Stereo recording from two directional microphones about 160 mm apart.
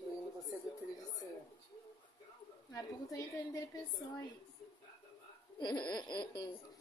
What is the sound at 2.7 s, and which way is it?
Speech, 20° left (ahead or behind).